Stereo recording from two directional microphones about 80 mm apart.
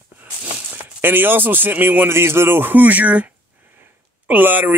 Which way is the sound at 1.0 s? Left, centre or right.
Right.